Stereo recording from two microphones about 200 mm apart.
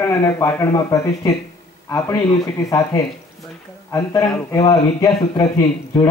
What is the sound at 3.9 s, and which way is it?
Speech, 15° left (ahead or behind).